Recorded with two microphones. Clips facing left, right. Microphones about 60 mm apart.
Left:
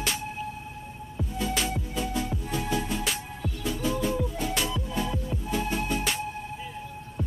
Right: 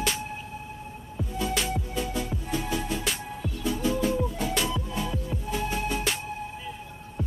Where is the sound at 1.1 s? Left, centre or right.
Centre.